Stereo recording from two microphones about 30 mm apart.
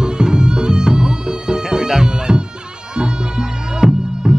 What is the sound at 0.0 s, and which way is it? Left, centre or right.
Music, right.